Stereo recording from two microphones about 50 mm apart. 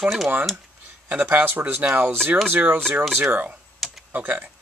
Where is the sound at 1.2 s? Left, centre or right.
Right.